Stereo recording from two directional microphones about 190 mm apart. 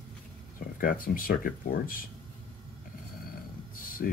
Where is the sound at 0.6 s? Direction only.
50° left (ahead or behind).